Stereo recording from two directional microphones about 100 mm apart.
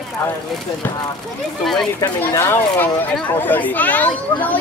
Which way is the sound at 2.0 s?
25° left (ahead or behind).